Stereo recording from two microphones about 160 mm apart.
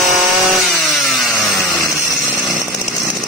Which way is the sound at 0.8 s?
Centre (ahead or behind).